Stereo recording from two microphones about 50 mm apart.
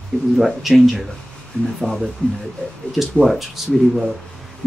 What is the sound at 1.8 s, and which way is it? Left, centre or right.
Speech, centre.